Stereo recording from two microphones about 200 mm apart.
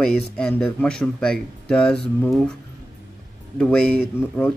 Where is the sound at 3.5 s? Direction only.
5° left (ahead or behind).